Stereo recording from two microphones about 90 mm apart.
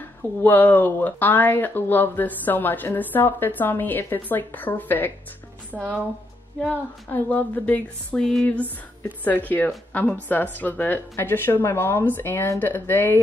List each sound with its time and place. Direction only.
0.4 s speech: 20° left (ahead or behind)
5.7 s speech: 15° right (ahead or behind)
7.1 s speech: 20° left (ahead or behind)
8.2 s a sound: 5° left (ahead or behind)
9.2 s speech: 20° left (ahead or behind)